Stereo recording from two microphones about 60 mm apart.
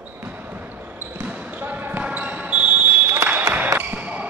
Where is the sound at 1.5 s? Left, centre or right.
Right.